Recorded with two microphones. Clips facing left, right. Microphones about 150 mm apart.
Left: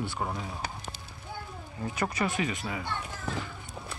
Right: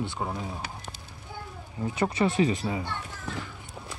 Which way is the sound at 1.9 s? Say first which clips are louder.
Right 6 dB; 30° right (ahead or behind).